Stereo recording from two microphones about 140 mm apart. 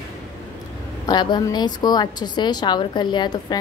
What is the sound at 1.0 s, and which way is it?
A woman's voice, 30° left (ahead or behind).